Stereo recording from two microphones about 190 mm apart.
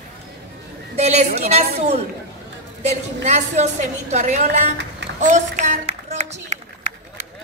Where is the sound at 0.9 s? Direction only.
35° right (ahead or behind).